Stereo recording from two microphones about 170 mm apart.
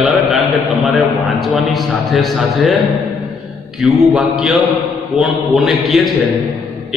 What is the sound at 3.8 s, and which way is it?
A man's voice, centre (ahead or behind).